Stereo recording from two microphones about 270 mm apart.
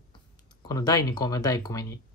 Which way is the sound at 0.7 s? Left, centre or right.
Centre.